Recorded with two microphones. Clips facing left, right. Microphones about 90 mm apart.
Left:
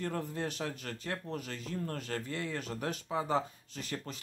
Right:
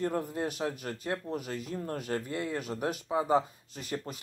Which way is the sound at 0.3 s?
10° right (ahead or behind).